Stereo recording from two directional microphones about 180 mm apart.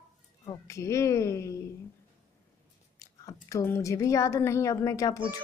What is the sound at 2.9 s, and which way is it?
A woman's voice, 15° left (ahead or behind).